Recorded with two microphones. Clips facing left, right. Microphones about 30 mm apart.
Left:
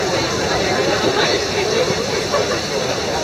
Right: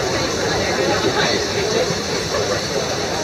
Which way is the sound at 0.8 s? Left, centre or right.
Centre.